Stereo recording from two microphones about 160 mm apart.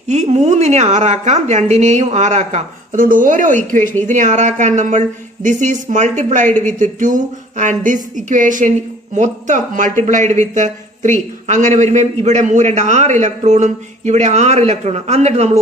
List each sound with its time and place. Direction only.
0.1 s speech: 45° right (ahead or behind)